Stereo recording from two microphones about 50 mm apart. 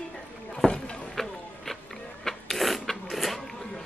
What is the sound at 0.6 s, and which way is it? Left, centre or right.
Rowboat, centre.